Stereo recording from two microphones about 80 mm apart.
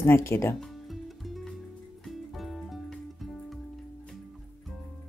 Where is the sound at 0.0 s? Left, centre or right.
Left.